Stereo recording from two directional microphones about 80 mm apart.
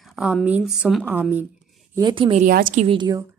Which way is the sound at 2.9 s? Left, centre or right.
Right.